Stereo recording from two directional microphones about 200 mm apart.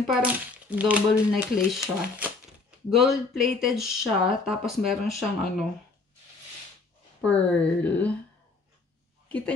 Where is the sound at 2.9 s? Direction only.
Centre (ahead or behind).